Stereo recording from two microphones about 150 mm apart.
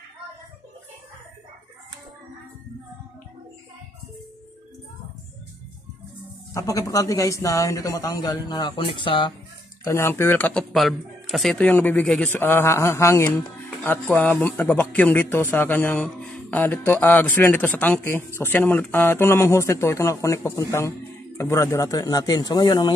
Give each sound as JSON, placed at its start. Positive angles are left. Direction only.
{"t": 6.5, "sound": "speech", "side_deg": 20}
{"t": 9.8, "sound": "a man's voice", "side_deg": 15}